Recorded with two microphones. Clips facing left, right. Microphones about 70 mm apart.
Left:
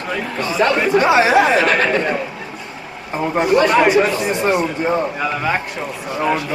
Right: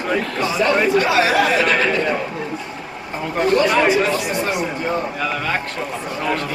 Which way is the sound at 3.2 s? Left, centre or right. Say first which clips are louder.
Left 2 dB; centre.